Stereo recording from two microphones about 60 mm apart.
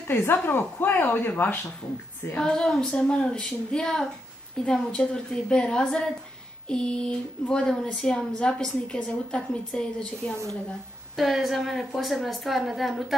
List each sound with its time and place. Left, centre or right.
0.1 s speech: left
2.3 s a woman's voice: centre
11.1 s a woman's voice: centre